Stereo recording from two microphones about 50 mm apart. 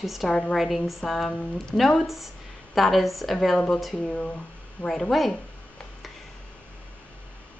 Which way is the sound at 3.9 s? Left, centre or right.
Left.